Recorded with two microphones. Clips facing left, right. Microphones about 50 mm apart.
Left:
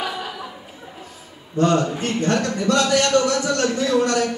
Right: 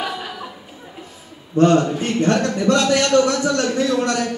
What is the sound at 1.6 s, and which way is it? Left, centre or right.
A man's voice, right.